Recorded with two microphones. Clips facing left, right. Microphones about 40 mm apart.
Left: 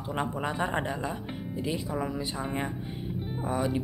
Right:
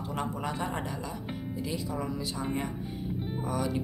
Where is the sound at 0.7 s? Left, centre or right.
Left.